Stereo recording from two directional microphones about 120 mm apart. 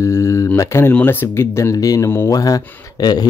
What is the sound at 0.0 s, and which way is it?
Speech, 25° left (ahead or behind).